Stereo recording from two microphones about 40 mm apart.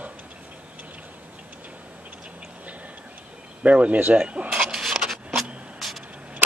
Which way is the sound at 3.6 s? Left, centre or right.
Right.